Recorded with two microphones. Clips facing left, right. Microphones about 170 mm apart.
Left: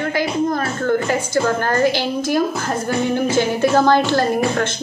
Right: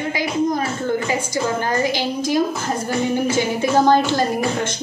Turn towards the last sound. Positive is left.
turn(degrees=-15)  # may be behind; listen again after turning